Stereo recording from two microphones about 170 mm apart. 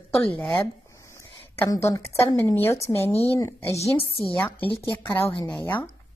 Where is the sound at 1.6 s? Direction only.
20° left (ahead or behind).